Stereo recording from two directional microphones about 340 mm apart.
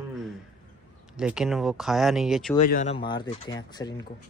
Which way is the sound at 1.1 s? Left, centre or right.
Centre.